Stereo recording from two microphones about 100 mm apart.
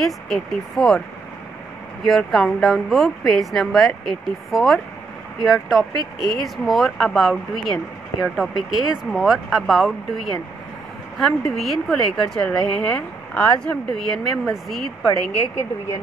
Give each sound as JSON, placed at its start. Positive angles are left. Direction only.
{"t": 0.0, "sound": "a woman's voice", "side_deg": 5}
{"t": 2.0, "sound": "a woman's voice", "side_deg": 0}
{"t": 11.1, "sound": "a woman's voice", "side_deg": 5}